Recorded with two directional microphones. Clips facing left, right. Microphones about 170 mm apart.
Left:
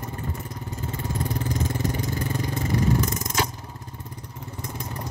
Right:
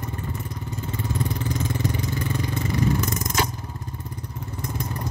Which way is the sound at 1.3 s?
45° left (ahead or behind).